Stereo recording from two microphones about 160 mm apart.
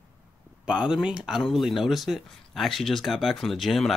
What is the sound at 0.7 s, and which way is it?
Speech, 5° right (ahead or behind).